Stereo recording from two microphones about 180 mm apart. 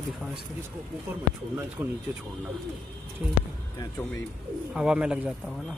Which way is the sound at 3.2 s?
10° right (ahead or behind).